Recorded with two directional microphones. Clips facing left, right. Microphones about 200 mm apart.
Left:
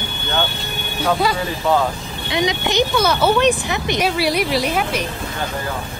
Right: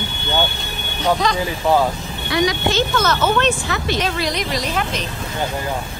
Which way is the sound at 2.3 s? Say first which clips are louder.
Right 1 dB; 20° left (ahead or behind).